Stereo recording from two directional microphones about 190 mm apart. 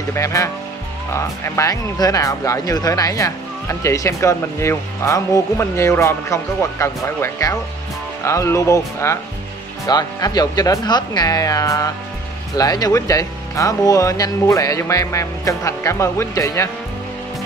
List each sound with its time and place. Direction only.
0.1 s speech: 15° left (ahead or behind)